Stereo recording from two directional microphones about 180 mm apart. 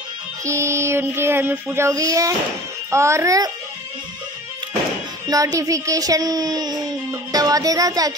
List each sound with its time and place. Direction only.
0.5 s child singing: 15° right (ahead or behind)
5.3 s speech: 20° right (ahead or behind)